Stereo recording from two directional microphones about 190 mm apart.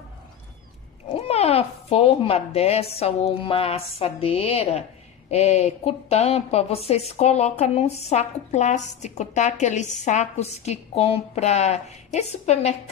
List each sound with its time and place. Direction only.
1.0 s a woman's voice: 30° left (ahead or behind)